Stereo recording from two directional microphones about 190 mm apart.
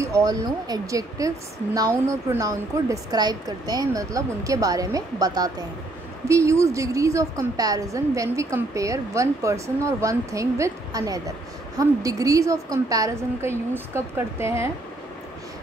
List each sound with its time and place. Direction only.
0.0 s a woman's voice: 15° right (ahead or behind)